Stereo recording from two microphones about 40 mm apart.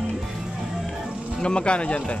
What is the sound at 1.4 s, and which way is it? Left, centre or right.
Speech, left.